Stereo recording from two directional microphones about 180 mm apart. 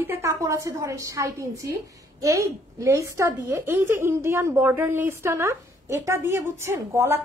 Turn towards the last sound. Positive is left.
turn(degrees=-15)  # may be behind; listen again after turning